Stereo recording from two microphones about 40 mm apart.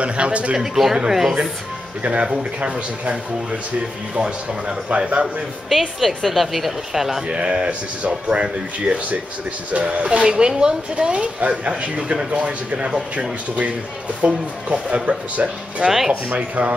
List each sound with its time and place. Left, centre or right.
0.0 s speech: right
0.6 s speech: centre
2.0 s speech: right
5.7 s speech: centre
7.2 s speech: right
14.2 s speech: right